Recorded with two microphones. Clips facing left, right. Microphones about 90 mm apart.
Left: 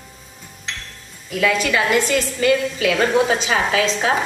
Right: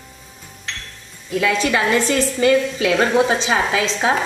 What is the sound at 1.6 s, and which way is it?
A woman's voice, 30° right (ahead or behind).